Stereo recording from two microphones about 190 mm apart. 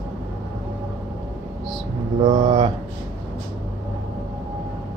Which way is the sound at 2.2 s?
30° right (ahead or behind).